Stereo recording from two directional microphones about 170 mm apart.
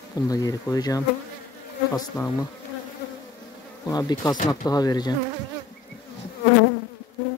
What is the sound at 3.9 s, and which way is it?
Speech, 25° left (ahead or behind).